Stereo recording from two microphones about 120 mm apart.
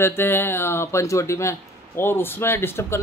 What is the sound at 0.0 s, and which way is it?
Speech, 20° left (ahead or behind).